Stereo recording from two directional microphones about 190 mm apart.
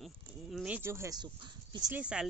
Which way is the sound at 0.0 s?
Centre (ahead or behind).